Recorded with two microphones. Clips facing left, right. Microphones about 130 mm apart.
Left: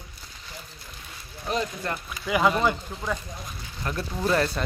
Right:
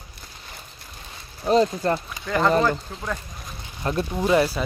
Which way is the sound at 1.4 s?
30° right (ahead or behind).